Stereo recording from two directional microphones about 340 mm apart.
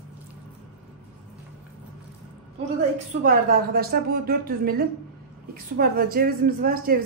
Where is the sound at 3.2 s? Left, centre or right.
Right.